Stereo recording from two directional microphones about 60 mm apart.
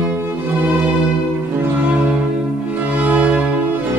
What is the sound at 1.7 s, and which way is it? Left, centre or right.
Music, right.